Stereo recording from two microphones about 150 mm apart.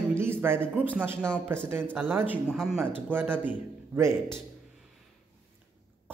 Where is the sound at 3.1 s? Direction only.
15° right (ahead or behind).